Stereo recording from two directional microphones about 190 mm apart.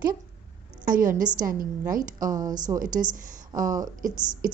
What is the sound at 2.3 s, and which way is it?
Speech, 20° right (ahead or behind).